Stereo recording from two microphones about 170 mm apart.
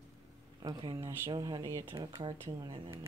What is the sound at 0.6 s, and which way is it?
Speech, 30° right (ahead or behind).